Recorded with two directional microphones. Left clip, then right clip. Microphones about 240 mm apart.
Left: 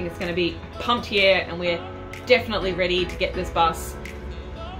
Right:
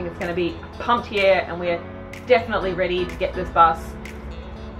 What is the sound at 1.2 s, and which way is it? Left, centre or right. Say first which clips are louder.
Speech: even; centre.